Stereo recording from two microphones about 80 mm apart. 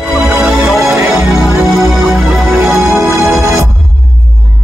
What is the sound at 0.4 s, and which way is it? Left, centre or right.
Music, centre.